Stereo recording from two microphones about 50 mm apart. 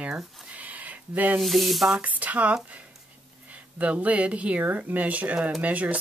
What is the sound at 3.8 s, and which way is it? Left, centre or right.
Speech, right.